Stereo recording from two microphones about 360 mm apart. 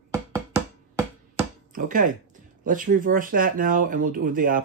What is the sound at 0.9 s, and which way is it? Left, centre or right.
Speech, centre.